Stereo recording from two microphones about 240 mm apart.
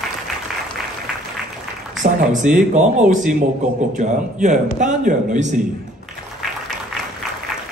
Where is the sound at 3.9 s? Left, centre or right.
Right.